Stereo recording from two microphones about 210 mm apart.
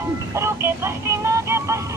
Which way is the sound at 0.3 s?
10° right (ahead or behind).